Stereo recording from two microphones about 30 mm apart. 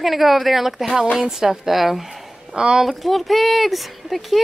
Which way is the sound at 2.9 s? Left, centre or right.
Centre.